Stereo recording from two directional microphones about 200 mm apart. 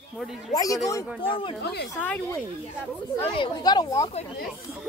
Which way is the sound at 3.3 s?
20° left (ahead or behind).